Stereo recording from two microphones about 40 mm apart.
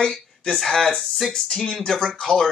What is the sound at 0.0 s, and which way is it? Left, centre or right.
A man's voice, centre.